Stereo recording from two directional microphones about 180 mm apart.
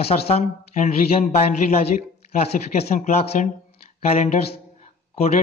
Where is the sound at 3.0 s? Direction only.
40° left (ahead or behind).